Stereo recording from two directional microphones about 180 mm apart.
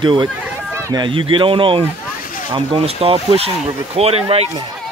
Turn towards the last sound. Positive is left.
turn(degrees=-35)  # may be behind; listen again after turning